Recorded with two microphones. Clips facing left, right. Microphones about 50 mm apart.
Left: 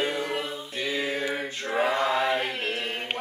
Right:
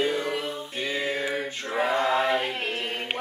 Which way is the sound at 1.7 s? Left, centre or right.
Left.